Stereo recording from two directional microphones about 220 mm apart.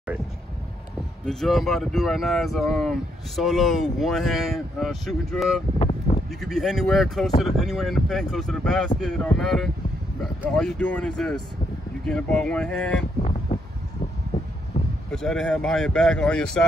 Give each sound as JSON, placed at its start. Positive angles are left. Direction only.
{"t": 1.2, "sound": "speech", "side_deg": 0}
{"t": 5.8, "sound": "a sound", "side_deg": 30}
{"t": 6.4, "sound": "speech", "side_deg": 0}
{"t": 15.0, "sound": "speech", "side_deg": 0}